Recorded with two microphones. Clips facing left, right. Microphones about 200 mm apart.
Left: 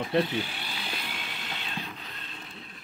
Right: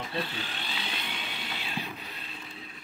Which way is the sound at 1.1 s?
Centre (ahead or behind).